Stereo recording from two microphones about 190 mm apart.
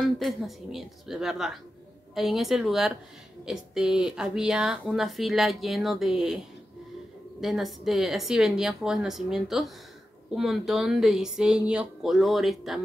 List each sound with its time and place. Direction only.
0.0 s speech: centre (ahead or behind)